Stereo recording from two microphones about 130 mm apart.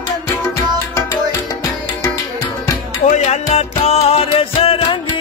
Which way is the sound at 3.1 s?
65° left (ahead or behind).